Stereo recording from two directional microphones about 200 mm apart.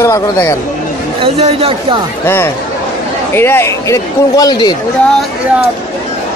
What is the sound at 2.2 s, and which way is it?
Speech, 10° left (ahead or behind).